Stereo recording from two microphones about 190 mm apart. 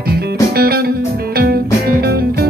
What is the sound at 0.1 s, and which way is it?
Music, 55° right (ahead or behind).